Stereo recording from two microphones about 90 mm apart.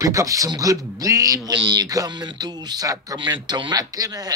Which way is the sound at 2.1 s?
55° right (ahead or behind).